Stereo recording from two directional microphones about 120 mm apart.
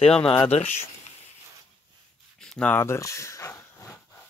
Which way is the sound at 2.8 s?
25° left (ahead or behind).